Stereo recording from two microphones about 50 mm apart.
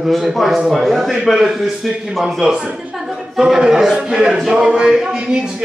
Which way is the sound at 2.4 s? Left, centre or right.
Centre.